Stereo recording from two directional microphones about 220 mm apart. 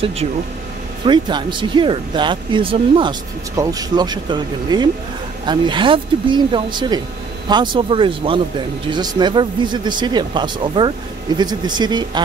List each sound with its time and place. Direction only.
1.0 s speech: 20° right (ahead or behind)